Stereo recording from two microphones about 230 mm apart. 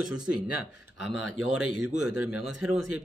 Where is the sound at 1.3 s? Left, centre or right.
Right.